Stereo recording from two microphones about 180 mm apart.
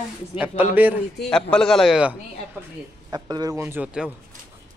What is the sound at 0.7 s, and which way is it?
Speech, 10° right (ahead or behind).